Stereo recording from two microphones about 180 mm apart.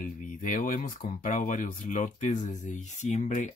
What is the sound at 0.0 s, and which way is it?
Speech, 50° left (ahead or behind).